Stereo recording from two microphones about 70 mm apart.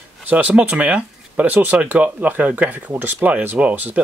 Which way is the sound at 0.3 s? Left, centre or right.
Right.